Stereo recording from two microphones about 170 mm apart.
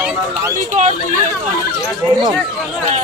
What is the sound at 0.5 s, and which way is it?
Speech, 45° right (ahead or behind).